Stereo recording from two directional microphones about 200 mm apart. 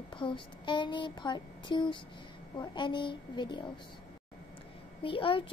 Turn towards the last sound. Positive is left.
turn(degrees=25)  # may be behind; listen again after turning